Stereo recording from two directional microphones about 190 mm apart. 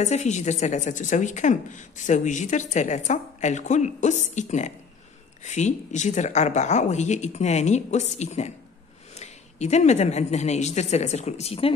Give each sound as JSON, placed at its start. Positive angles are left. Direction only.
{"t": 0.0, "sound": "speech", "side_deg": 35}